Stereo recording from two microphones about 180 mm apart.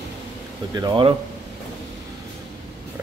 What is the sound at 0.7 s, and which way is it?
Speech, 20° right (ahead or behind).